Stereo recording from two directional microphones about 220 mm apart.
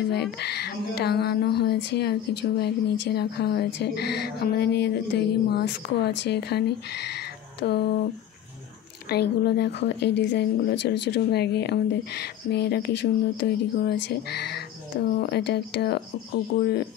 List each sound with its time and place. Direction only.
0.1 s speech: 50° left (ahead or behind)
9.1 s speech: 45° left (ahead or behind)